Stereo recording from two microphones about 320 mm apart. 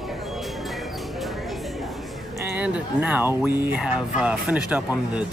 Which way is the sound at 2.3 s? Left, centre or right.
Centre.